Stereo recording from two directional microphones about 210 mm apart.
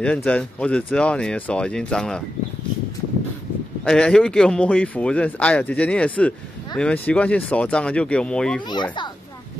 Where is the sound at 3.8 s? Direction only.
5° left (ahead or behind).